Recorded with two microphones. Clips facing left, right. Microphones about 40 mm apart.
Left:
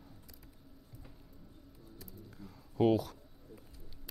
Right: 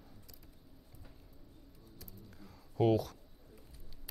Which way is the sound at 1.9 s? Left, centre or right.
Centre.